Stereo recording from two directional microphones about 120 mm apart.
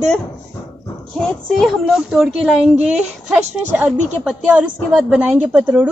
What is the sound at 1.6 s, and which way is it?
A woman's voice, 5° right (ahead or behind).